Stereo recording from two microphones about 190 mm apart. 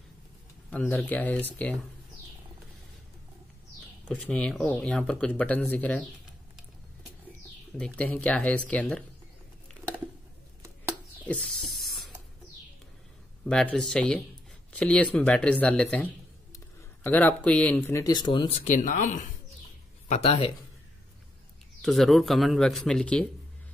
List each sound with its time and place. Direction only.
0.7 s speech: 10° left (ahead or behind)
4.1 s speech: 5° left (ahead or behind)
7.7 s speech: 5° left (ahead or behind)
11.2 s spray: 5° left (ahead or behind)
13.5 s speech: 5° left (ahead or behind); by 18.6 s 25° left (ahead or behind)
18.8 s speech: 40° left (ahead or behind)
20.1 s speech: 30° left (ahead or behind)
21.8 s speech: centre (ahead or behind)